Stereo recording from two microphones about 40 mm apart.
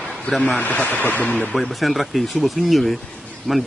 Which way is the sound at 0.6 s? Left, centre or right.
Left.